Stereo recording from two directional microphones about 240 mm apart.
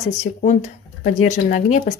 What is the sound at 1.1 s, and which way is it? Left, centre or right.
Speech, left.